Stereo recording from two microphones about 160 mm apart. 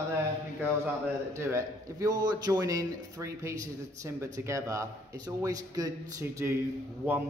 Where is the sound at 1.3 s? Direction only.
15° right (ahead or behind).